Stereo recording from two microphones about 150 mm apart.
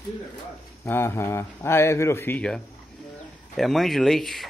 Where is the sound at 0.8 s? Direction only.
20° left (ahead or behind); by 4.5 s centre (ahead or behind).